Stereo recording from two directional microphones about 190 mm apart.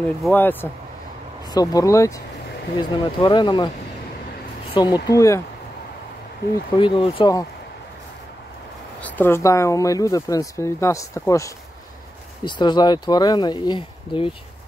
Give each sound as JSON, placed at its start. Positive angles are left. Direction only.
{"t": 0.2, "sound": "speech", "side_deg": 10}
{"t": 4.7, "sound": "speech", "side_deg": 20}
{"t": 6.8, "sound": "speech", "side_deg": 25}
{"t": 9.0, "sound": "speech", "side_deg": 10}